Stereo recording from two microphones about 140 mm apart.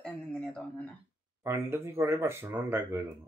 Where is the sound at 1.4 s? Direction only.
20° right (ahead or behind).